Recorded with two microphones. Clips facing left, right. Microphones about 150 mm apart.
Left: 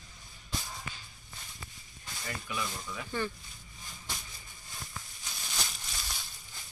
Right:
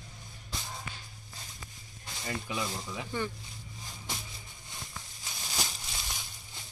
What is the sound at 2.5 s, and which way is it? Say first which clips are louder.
Speech: right 2 dB; 30° right (ahead or behind).